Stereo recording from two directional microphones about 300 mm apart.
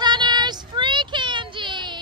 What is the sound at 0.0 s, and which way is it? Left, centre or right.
Child singing, centre.